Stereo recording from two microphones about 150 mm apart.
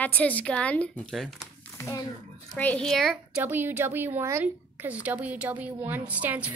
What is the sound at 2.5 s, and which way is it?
Speech, 5° left (ahead or behind).